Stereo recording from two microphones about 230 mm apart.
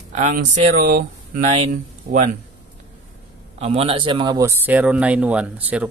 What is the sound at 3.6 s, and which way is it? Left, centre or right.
Speech, right.